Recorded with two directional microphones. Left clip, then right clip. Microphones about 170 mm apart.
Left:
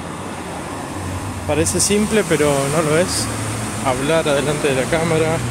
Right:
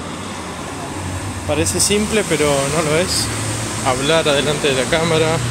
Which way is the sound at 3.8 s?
5° left (ahead or behind).